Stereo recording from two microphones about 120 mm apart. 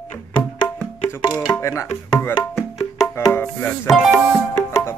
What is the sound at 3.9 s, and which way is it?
Speech, 5° right (ahead or behind).